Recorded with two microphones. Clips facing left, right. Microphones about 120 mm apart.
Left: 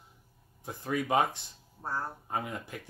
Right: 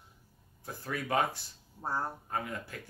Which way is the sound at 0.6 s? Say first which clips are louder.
Left 5 dB; 20° left (ahead or behind).